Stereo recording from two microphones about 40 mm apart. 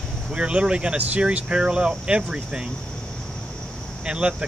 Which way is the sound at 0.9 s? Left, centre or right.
Right.